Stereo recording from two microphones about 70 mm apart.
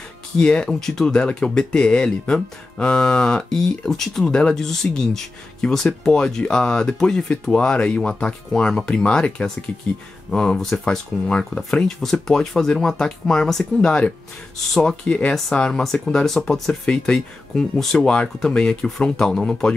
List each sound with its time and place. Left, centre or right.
0.4 s speech: centre
15.0 s speech: centre